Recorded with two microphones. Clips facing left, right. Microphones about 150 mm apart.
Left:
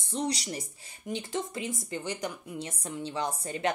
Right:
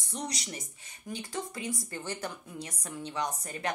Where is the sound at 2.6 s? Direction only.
30° left (ahead or behind).